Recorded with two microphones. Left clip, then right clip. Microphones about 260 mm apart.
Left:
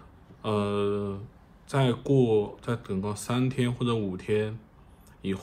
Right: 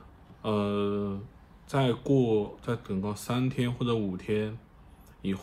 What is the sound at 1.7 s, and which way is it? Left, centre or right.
Speech, left.